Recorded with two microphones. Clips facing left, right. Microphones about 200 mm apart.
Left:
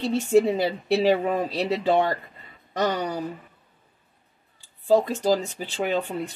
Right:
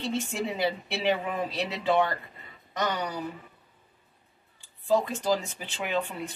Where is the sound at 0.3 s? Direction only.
40° left (ahead or behind).